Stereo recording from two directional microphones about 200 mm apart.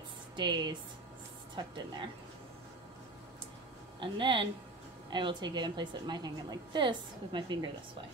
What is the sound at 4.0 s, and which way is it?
A woman's voice, 25° right (ahead or behind).